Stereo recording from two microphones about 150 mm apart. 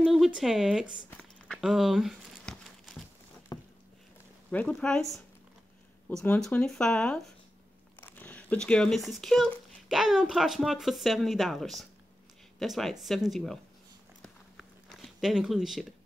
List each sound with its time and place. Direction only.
0.0 s speech: centre (ahead or behind)
1.6 s crumpling: centre (ahead or behind)
3.5 s a sound: 25° left (ahead or behind)
4.5 s speech: 10° left (ahead or behind)
6.0 s speech: 10° left (ahead or behind)
14.2 s a sound: centre (ahead or behind)